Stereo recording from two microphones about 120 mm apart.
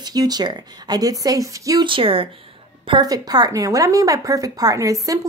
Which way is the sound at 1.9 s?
50° right (ahead or behind).